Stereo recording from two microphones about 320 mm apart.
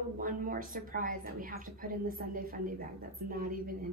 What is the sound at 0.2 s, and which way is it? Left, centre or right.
A woman's voice, right.